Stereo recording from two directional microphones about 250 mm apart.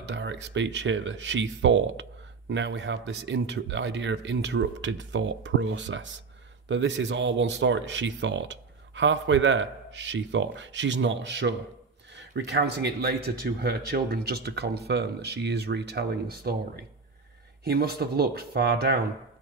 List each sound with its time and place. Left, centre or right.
0.0 s speech: right